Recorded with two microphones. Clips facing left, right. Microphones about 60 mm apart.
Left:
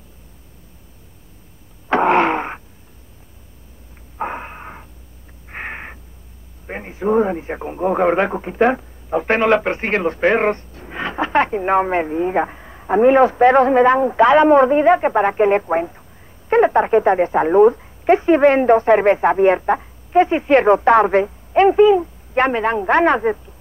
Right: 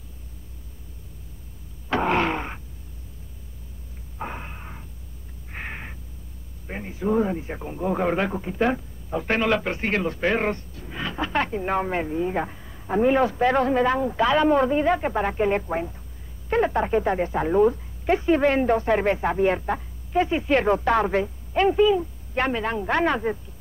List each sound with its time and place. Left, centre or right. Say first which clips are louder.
1.9 s wheeze: left 8 dB; left
4.2 s a sound: left 8 dB; left
6.7 s speech: left 6 dB; left